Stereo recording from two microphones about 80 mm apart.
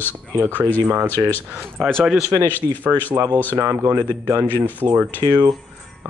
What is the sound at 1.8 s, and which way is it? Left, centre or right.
Speech, centre.